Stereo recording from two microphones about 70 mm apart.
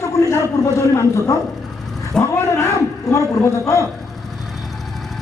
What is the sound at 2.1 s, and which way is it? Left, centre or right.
Speech, centre.